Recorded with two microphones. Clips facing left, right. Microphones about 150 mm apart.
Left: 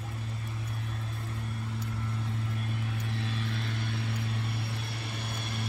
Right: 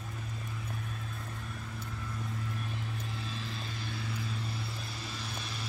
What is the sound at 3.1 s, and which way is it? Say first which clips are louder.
Vehicle: left 5 dB; 65° left (ahead or behind).